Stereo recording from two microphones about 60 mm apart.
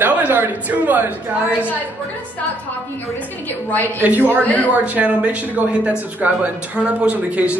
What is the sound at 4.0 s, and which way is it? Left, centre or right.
Speech, right.